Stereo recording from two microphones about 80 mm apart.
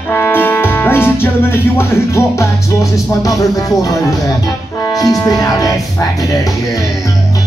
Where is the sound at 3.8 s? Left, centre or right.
Left.